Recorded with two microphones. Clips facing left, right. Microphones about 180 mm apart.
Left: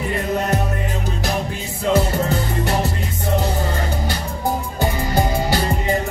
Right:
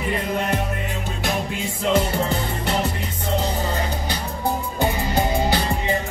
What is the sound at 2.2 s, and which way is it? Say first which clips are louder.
Music: left 3 dB; 45° left (ahead or behind).